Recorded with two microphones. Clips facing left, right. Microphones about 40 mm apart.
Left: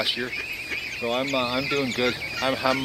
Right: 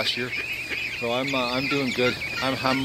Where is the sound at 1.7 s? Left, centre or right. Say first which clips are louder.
Even; left.